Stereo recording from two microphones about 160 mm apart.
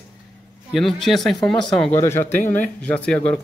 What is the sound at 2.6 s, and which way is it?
Speech, 5° left (ahead or behind).